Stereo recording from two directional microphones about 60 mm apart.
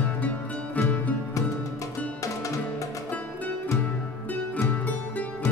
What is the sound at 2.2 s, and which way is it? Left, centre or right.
Music, left.